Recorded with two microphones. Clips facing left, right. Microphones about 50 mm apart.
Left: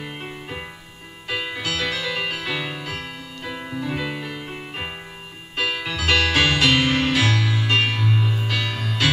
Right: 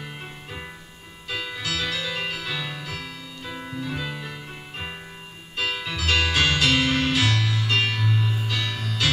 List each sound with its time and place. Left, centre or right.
0.0 s music: left
3.6 s music: left
3.9 s music: left